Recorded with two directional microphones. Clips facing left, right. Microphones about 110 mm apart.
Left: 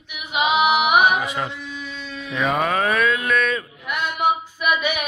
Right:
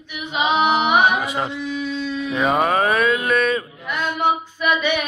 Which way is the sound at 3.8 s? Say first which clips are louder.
Even; 10° left (ahead or behind).